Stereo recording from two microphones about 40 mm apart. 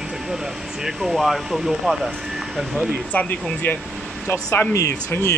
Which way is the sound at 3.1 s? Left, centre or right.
Left.